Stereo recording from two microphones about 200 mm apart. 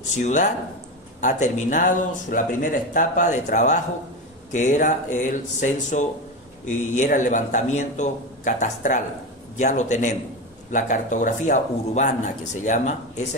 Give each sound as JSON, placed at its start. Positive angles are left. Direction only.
{"t": 0.1, "sound": "speech", "side_deg": 35}